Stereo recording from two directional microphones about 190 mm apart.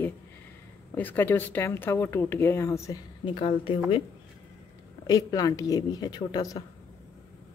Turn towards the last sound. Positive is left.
turn(degrees=25)  # may be behind; listen again after turning